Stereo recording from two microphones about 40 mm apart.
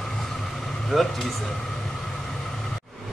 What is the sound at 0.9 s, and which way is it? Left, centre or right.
Speech, centre.